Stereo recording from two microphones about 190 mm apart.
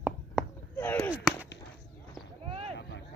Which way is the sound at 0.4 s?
5° right (ahead or behind).